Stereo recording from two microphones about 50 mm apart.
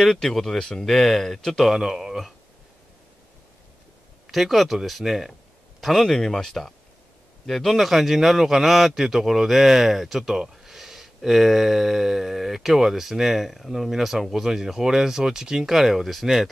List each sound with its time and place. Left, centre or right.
0.0 s a man's voice: centre
4.3 s a man's voice: centre